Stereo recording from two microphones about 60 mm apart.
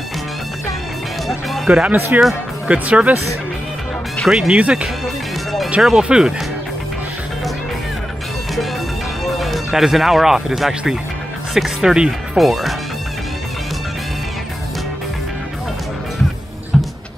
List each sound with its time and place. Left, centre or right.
1.2 s music: centre
2.1 s speech: right
2.7 s speech: centre
4.3 s speech: centre
4.6 s speech: right
5.8 s speech: centre
9.2 s speech: centre
16.7 s vehicle: centre